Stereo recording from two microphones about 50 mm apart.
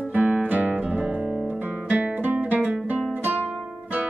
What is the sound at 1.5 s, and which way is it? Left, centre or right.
Guitar, right.